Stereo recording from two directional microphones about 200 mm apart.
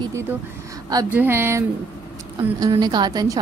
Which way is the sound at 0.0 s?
15° right (ahead or behind).